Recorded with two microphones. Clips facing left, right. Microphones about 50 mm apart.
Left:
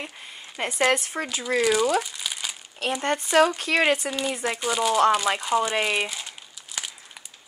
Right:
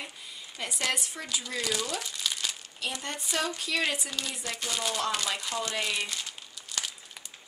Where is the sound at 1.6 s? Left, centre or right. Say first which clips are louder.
Left 12 dB; left.